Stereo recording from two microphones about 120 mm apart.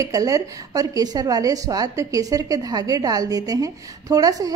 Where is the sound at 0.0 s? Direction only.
30° right (ahead or behind).